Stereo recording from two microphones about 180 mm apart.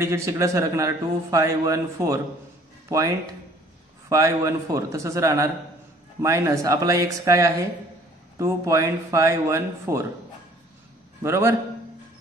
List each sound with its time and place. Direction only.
0.0 s a man's voice: 15° right (ahead or behind)
11.2 s a man's voice: 15° right (ahead or behind)